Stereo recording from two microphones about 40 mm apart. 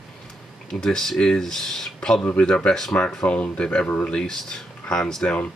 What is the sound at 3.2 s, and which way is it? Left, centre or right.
Speech, left.